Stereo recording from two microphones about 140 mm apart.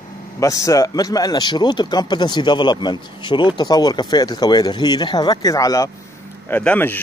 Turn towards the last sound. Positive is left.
turn(degrees=10)  # may be behind; listen again after turning